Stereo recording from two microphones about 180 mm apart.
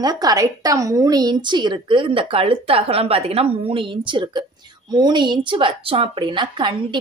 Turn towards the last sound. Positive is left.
turn(degrees=-25)  # may be behind; listen again after turning